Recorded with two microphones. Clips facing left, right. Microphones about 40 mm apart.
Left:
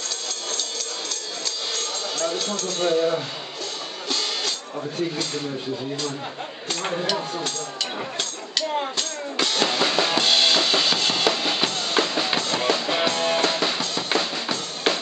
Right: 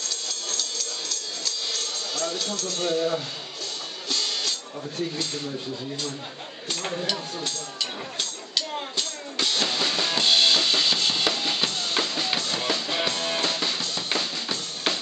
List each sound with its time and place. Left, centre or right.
0.0 s music: centre
6.7 s speech: centre
8.2 s music: centre
9.4 s drum kit: centre
12.6 s music: centre